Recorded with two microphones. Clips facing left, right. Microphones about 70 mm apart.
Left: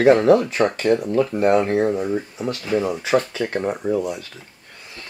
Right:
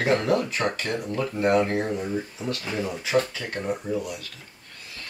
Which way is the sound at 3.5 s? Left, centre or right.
Left.